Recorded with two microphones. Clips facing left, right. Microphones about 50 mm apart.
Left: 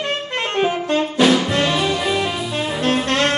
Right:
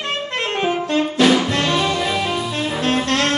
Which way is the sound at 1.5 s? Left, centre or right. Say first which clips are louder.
Even; centre.